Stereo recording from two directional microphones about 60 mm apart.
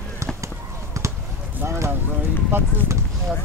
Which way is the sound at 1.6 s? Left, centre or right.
Right.